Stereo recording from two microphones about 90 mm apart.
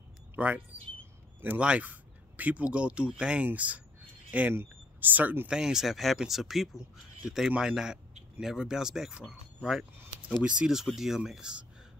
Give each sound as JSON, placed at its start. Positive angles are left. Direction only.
{"t": 1.4, "sound": "speech", "side_deg": -15}
{"t": 5.5, "sound": "speech", "side_deg": -5}